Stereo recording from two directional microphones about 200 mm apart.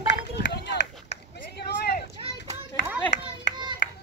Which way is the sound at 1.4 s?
55° left (ahead or behind).